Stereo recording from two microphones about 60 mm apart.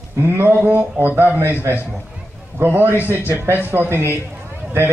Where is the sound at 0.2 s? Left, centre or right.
Right.